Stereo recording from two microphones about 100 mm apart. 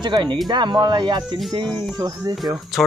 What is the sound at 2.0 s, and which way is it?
Speech, 40° right (ahead or behind).